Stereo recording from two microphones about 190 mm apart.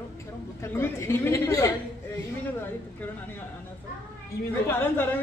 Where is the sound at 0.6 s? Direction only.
15° left (ahead or behind).